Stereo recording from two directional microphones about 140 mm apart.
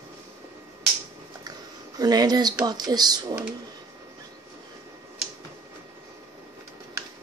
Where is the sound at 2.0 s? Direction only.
30° right (ahead or behind).